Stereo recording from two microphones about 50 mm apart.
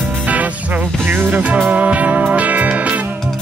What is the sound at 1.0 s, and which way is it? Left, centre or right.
Music, right.